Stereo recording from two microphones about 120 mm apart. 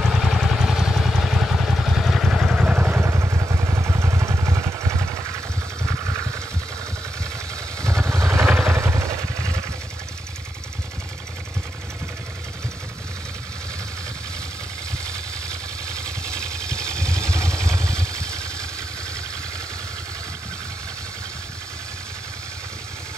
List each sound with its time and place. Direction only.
0.0 s vehicle: centre (ahead or behind)
2.6 s vehicle: 15° right (ahead or behind)
8.0 s vehicle: 25° right (ahead or behind)
15.0 s vehicle: 5° left (ahead or behind)